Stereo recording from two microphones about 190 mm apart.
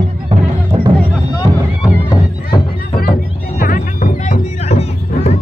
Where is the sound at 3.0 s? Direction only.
50° left (ahead or behind); by 5.3 s 35° left (ahead or behind).